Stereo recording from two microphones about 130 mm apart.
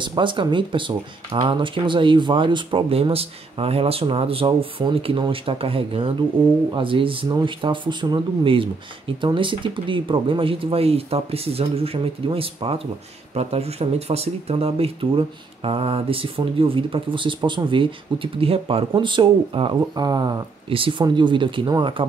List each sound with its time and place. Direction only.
0.0 s speech: 40° right (ahead or behind)